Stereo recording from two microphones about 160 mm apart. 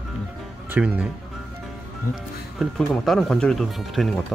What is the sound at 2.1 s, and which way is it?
Speech, 55° left (ahead or behind).